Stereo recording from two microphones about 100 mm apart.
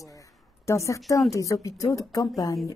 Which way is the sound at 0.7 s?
30° left (ahead or behind).